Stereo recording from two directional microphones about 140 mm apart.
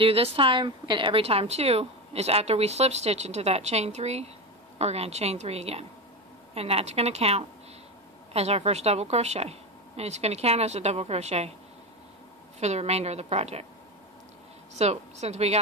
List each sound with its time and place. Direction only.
0.0 s a woman's voice: 40° right (ahead or behind)
12.5 s a woman's voice: 50° right (ahead or behind)
14.8 s a woman's voice: 50° right (ahead or behind)